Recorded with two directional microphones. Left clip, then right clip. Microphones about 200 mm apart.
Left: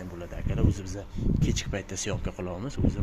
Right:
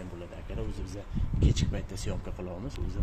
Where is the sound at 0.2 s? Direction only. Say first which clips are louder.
Left 10 dB; 15° left (ahead or behind).